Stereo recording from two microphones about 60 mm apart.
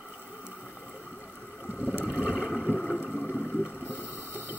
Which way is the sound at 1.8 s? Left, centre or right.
Right.